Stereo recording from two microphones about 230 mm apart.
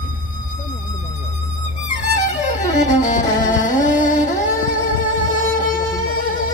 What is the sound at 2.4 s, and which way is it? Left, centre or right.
Music, left.